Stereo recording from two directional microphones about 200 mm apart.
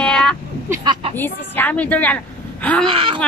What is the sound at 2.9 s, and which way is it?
Speech, 25° right (ahead or behind).